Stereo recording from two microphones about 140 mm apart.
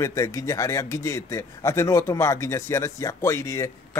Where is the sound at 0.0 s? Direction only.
20° left (ahead or behind).